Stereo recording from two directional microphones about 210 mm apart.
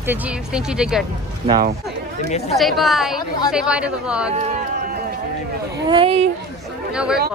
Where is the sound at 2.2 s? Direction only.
30° left (ahead or behind).